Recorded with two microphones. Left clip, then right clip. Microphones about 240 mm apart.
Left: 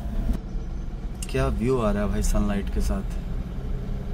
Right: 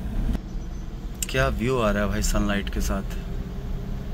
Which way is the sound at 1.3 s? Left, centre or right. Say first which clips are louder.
Right 1 dB; centre.